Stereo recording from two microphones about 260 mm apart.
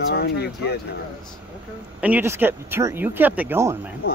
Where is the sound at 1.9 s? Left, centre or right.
Centre.